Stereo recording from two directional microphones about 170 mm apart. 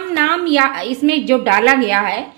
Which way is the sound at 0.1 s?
75° right (ahead or behind).